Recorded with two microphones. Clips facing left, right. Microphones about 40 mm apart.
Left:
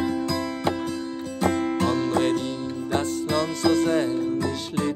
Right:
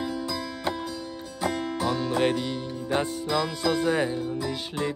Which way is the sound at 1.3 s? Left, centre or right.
Centre.